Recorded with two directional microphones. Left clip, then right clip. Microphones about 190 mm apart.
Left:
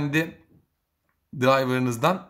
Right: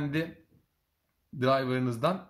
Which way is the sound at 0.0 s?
25° left (ahead or behind).